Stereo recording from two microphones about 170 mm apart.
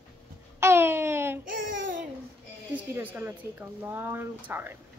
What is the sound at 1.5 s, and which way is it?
Babbling, 50° right (ahead or behind).